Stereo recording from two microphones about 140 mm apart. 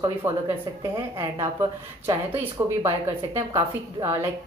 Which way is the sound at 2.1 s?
20° right (ahead or behind).